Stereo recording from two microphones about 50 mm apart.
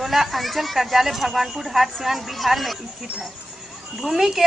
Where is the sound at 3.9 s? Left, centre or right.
Centre.